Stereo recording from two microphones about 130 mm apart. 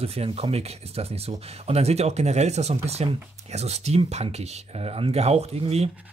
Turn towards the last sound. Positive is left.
turn(degrees=-50)  # may be behind; listen again after turning